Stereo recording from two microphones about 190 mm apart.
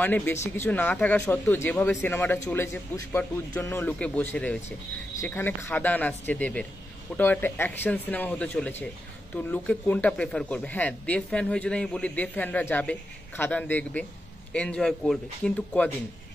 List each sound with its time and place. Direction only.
0.0 s speech: 10° left (ahead or behind)